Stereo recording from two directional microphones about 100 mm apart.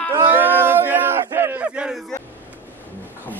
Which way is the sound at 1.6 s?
10° right (ahead or behind).